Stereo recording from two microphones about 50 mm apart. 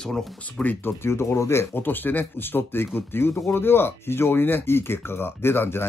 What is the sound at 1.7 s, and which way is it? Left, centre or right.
Speech, left.